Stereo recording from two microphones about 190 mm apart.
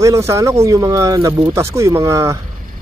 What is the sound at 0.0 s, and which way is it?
Speech, 15° right (ahead or behind).